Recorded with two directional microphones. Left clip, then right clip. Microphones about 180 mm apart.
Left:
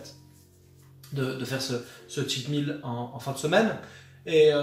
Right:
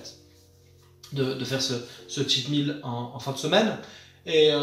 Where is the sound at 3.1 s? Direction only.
10° left (ahead or behind).